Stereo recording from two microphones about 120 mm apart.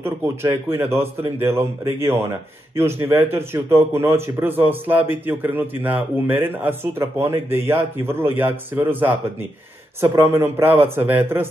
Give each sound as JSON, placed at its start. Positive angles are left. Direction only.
{"t": 0.7, "sound": "a man's voice", "side_deg": -20}